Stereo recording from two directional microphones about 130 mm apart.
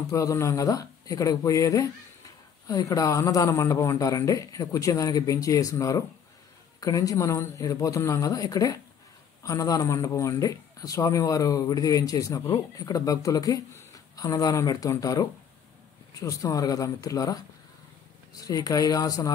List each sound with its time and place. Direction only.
0.0 s a man's voice: 25° left (ahead or behind)
18.4 s a man's voice: 30° left (ahead or behind)